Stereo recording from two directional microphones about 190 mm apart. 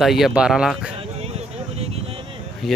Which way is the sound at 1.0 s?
35° right (ahead or behind).